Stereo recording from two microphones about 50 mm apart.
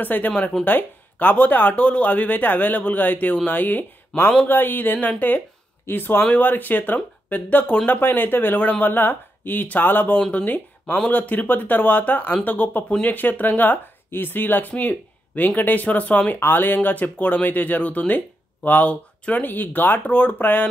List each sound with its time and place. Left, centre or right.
0.0 s speech: left
16.3 s speech: left